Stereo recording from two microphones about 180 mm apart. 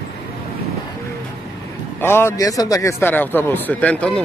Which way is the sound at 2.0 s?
15° left (ahead or behind).